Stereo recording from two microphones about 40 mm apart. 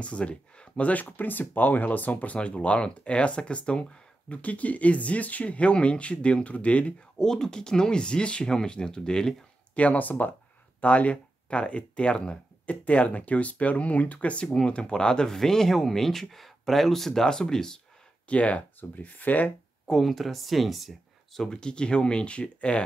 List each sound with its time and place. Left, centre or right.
0.0 s speech: left
1.1 s speech: left
2.3 s speech: left
7.2 s speech: centre
9.8 s speech: left; by 17.7 s centre
18.3 s speech: left
18.8 s speech: left
19.9 s speech: centre
21.4 s speech: centre